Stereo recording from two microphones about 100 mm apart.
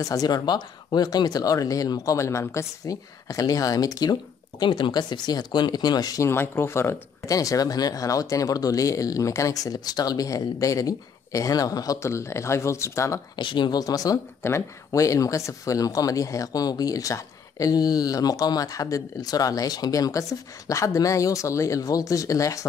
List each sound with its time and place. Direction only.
0.0 s speech: 40° left (ahead or behind)
6.2 s speech: 20° left (ahead or behind)
13.4 s speech: 50° left (ahead or behind); by 22.7 s 35° left (ahead or behind)